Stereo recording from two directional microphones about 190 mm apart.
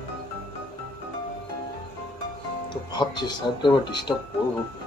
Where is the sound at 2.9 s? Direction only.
25° left (ahead or behind).